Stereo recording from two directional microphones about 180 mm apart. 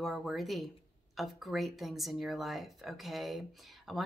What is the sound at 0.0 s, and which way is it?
Speech, centre (ahead or behind).